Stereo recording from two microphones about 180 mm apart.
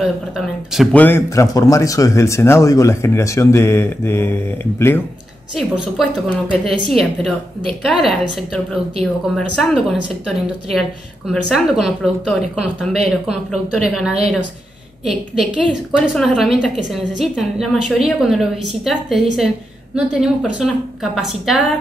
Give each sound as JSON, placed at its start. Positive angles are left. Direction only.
{"t": 0.7, "sound": "speech", "side_deg": 10}
{"t": 5.6, "sound": "a woman's voice", "side_deg": 0}
{"t": 9.6, "sound": "a woman's voice", "side_deg": 0}